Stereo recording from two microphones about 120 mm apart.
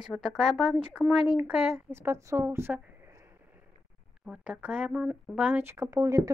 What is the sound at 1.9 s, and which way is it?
A woman's voice, 20° right (ahead or behind).